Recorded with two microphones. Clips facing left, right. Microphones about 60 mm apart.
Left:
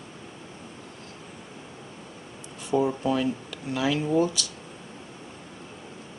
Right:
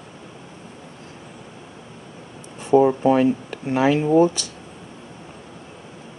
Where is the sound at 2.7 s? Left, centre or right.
Right.